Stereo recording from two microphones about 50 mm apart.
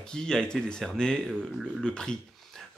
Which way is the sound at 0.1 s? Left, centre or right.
Centre.